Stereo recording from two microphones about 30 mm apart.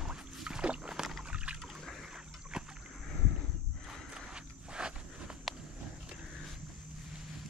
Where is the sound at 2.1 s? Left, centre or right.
Right.